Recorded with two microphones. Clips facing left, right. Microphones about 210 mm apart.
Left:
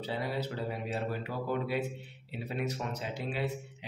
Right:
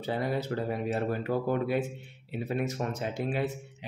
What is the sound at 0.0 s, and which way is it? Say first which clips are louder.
Speech: right 4 dB; 50° right (ahead or behind).